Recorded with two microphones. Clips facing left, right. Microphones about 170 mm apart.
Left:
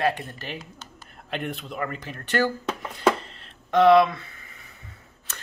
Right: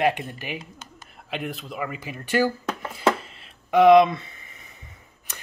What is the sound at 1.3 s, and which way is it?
Speech, centre (ahead or behind).